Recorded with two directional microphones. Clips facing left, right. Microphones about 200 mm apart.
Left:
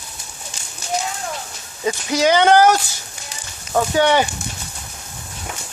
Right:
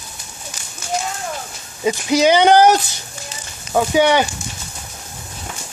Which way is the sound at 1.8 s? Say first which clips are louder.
Right 3 dB; 15° right (ahead or behind).